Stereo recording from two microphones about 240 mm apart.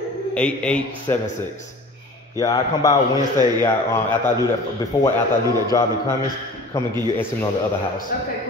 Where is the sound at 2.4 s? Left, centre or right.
Centre.